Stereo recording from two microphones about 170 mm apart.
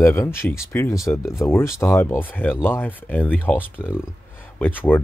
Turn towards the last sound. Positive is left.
turn(degrees=10)  # may be behind; listen again after turning